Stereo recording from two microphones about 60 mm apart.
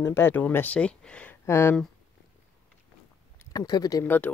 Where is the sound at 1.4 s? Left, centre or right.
Left.